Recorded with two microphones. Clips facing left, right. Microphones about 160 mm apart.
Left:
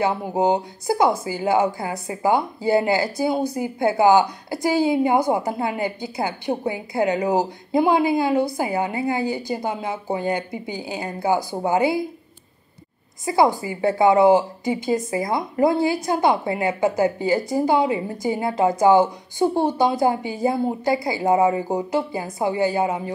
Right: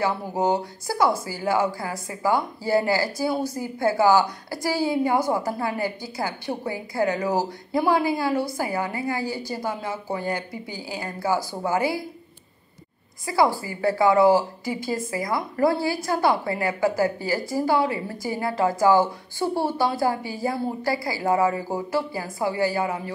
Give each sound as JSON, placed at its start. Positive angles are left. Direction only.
{"t": 0.0, "sound": "a woman's voice", "side_deg": 20}
{"t": 13.2, "sound": "a woman's voice", "side_deg": 20}